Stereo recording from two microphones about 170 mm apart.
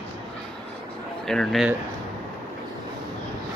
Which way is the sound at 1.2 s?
5° left (ahead or behind).